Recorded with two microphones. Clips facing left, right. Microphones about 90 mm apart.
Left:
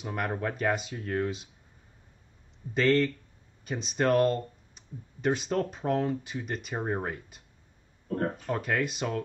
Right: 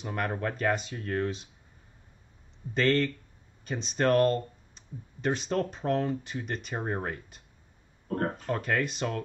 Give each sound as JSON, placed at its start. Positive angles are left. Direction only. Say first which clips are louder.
{"t": 0.0, "sound": "speech", "louder": "even", "side_deg": 5}
{"t": 2.7, "sound": "speech", "louder": "left 1 dB", "side_deg": 5}
{"t": 8.1, "sound": "a sound", "louder": "even", "side_deg": -65}
{"t": 8.4, "sound": "speech", "louder": "even", "side_deg": 5}